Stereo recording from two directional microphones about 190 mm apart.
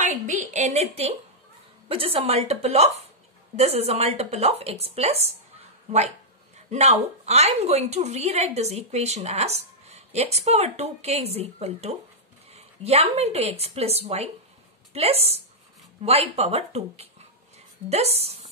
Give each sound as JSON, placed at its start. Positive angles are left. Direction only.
{"t": 0.0, "sound": "a woman's voice", "side_deg": -40}
{"t": 6.7, "sound": "a woman's voice", "side_deg": -35}